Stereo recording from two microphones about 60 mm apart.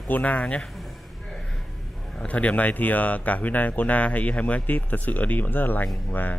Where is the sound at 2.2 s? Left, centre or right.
Left.